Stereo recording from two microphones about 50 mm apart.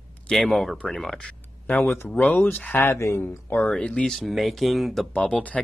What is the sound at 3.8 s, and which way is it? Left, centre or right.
Speech, centre.